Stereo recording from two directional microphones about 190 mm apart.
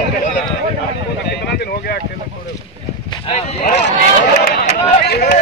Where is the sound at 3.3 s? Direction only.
35° left (ahead or behind).